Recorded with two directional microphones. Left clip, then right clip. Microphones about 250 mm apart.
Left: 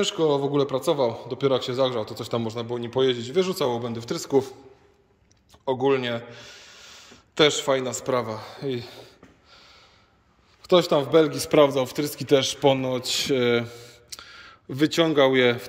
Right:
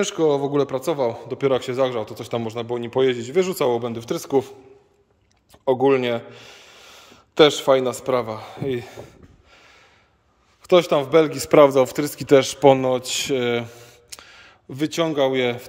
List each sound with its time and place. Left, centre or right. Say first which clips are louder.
0.0 s a man's voice: right 3 dB; centre
5.5 s a man's voice: right 5 dB; right
9.5 s a sound: right 2 dB; centre
10.6 s a man's voice: right 3 dB; centre